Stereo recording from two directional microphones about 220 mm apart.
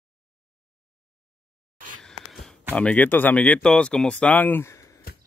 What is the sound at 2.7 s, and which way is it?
Speech, 5° left (ahead or behind).